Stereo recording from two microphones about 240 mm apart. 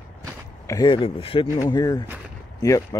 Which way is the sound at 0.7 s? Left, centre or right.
Centre.